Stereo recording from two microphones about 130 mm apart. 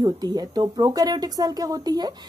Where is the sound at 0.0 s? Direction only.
30° right (ahead or behind).